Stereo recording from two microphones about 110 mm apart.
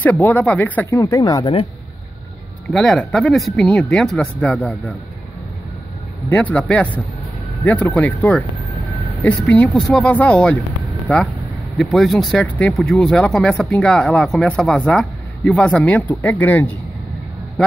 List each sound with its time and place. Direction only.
0.0 s speech: 15° left (ahead or behind)
0.8 s speech: 30° left (ahead or behind)
1.4 s speech: 55° left (ahead or behind)
2.7 s speech: 5° left (ahead or behind)
6.2 s speech: 15° left (ahead or behind)
9.8 s speech: 5° left (ahead or behind)